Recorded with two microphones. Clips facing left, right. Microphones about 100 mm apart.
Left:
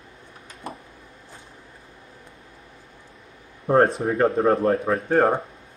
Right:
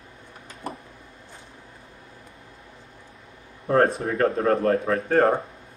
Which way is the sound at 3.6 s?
25° left (ahead or behind).